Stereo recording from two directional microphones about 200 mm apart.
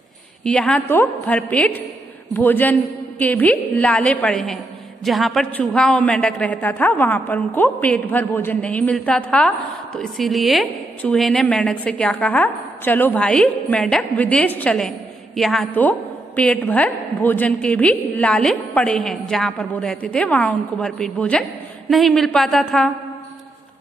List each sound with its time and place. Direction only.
0.4 s a woman's voice: 5° left (ahead or behind)